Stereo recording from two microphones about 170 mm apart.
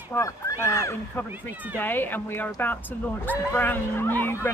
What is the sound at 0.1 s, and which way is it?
Speech, 15° left (ahead or behind).